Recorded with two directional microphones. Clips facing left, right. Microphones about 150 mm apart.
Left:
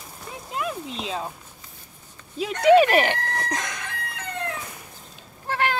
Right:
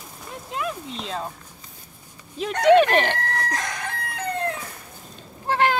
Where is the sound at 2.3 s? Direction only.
Centre (ahead or behind).